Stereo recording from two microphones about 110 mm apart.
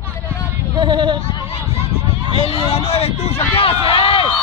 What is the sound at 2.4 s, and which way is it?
Speech, 60° left (ahead or behind).